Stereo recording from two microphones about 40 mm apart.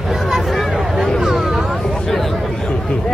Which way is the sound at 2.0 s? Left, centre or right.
Centre.